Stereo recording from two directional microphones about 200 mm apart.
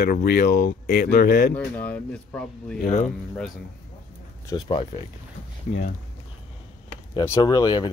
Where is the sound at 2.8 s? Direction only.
40° left (ahead or behind).